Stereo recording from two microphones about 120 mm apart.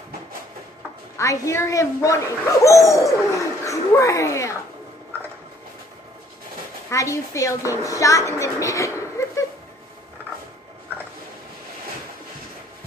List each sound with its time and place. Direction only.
1.1 s speech: 25° left (ahead or behind)
6.9 s a woman's voice: 25° left (ahead or behind)